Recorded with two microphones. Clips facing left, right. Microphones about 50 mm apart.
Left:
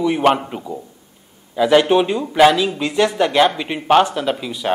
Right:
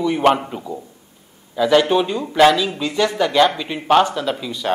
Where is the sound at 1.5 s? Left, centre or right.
Centre.